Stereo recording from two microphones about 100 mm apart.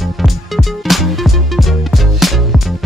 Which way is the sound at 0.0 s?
Centre (ahead or behind).